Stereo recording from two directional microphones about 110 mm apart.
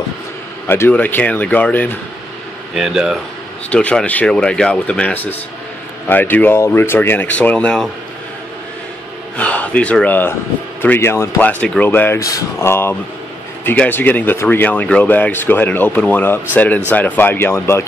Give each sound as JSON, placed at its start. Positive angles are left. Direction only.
{"t": 0.7, "sound": "speech", "side_deg": 20}
{"t": 2.7, "sound": "speech", "side_deg": -5}
{"t": 3.7, "sound": "speech", "side_deg": 10}
{"t": 9.4, "sound": "speech", "side_deg": 10}